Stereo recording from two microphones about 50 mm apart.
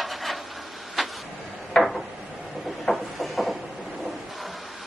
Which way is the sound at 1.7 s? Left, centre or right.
Centre.